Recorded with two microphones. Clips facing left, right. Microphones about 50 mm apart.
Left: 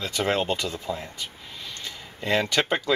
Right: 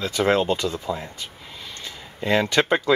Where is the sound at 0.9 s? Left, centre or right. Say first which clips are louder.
Right 1 dB; centre.